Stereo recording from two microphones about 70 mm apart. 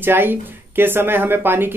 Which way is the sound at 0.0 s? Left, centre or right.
Right.